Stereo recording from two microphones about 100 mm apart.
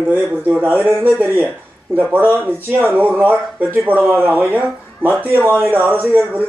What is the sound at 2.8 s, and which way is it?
A man's voice, 20° right (ahead or behind).